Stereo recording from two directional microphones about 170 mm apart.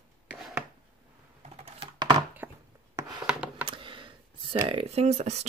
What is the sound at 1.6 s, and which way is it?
Computer keyboard, 25° right (ahead or behind).